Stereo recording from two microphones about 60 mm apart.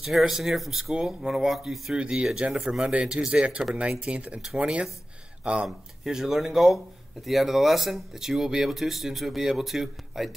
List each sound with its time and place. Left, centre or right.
0.0 s speech: centre